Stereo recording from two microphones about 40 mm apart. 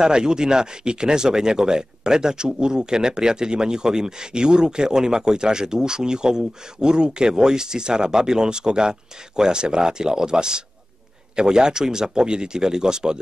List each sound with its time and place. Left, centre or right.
0.0 s speech: centre